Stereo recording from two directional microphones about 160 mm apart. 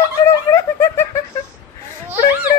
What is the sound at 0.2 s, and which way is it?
Snicker, 20° left (ahead or behind).